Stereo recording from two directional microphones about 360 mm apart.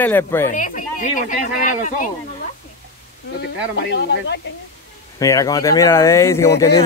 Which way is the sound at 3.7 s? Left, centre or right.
Left.